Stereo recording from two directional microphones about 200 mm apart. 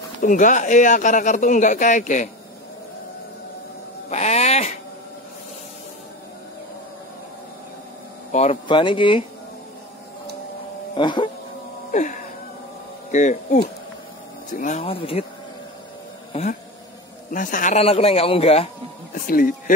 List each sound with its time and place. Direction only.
0.2 s a man's voice: 40° left (ahead or behind)
4.1 s a man's voice: 35° left (ahead or behind)
8.3 s speech: 35° left (ahead or behind)
11.0 s speech: 25° left (ahead or behind)
11.9 s a sound: 40° left (ahead or behind)
13.1 s a man's voice: 40° left (ahead or behind)
17.3 s a man's voice: 40° left (ahead or behind)
19.1 s speech: 45° left (ahead or behind)